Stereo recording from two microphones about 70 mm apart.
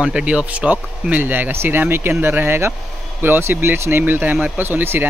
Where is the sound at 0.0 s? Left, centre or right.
Centre.